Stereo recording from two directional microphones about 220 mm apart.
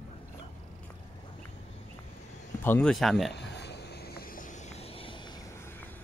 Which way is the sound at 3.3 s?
50° left (ahead or behind).